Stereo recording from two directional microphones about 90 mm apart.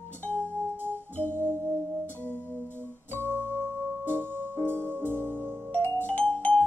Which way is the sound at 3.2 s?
25° right (ahead or behind).